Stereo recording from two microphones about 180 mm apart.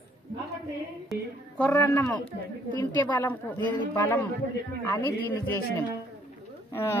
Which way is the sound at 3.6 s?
25° left (ahead or behind).